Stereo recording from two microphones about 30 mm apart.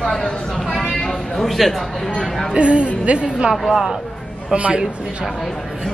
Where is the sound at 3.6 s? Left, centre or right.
Centre.